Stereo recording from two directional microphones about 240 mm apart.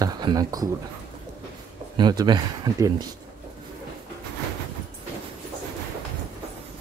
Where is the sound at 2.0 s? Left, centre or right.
Centre.